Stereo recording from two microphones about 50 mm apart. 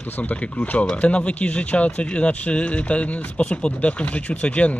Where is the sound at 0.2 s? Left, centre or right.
Left.